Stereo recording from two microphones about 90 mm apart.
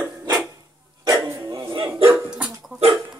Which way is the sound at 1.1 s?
30° right (ahead or behind).